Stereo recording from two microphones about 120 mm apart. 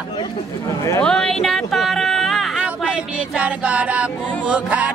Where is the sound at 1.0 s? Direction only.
5° left (ahead or behind).